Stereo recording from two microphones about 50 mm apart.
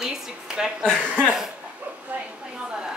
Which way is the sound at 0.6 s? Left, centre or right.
Centre.